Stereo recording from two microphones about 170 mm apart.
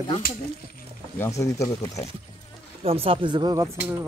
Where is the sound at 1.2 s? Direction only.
20° left (ahead or behind).